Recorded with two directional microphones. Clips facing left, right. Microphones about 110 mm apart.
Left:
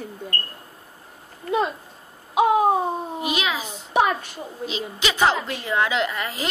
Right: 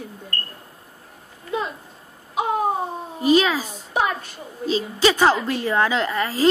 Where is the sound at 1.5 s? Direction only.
80° left.